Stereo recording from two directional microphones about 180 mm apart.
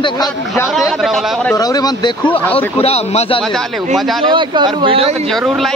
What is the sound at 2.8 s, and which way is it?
Speech, 35° left (ahead or behind).